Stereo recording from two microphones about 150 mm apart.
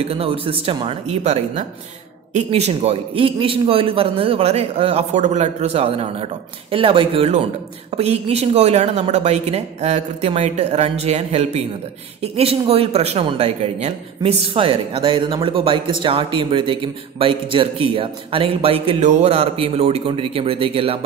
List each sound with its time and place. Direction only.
0.0 s a man's voice: 40° right (ahead or behind)